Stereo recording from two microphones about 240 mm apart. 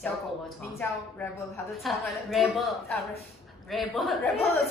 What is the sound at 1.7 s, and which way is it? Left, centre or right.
A woman's voice, centre.